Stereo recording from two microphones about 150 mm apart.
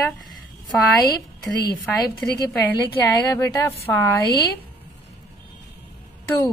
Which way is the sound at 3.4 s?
20° left (ahead or behind).